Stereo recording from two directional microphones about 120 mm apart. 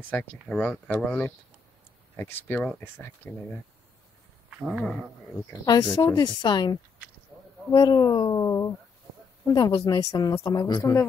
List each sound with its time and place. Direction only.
0.1 s speech: 10° left (ahead or behind)
4.5 s a sound: 10° right (ahead or behind)
5.7 s a woman's voice: 30° left (ahead or behind)
7.3 s a sound: centre (ahead or behind)
7.7 s a woman's voice: 35° left (ahead or behind)
9.5 s a woman's voice: 40° left (ahead or behind)
9.9 s a woman's voice: 30° left (ahead or behind)
10.8 s speech: 20° left (ahead or behind)